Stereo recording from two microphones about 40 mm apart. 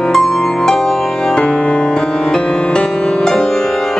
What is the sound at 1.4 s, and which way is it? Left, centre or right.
Music, left.